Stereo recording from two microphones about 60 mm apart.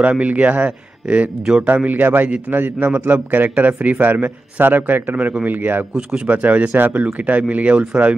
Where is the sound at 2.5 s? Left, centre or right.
Right.